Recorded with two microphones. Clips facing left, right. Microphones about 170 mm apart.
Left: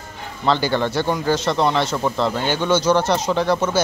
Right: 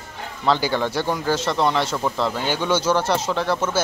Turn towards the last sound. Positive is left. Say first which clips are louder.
# left 3 dB
turn(degrees=-5)  # may be behind; listen again after turning